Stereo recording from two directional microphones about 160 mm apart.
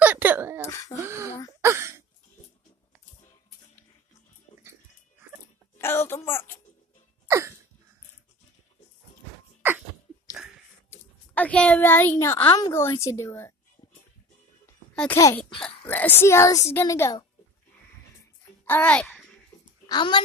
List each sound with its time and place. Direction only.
0.0 s a sound: 10° right (ahead or behind)
0.7 s a child's voice: 20° left (ahead or behind)
0.9 s a sound: 20° right (ahead or behind)
5.8 s a sound: 15° left (ahead or behind)
7.2 s cough: 15° right (ahead or behind)
10.9 s a child's voice: 10° left (ahead or behind)
15.1 s a child's voice: 20° left (ahead or behind)
15.6 s speech: 10° left (ahead or behind)
18.7 s a child's voice: 10° left (ahead or behind)
19.9 s a child's voice: 30° left (ahead or behind)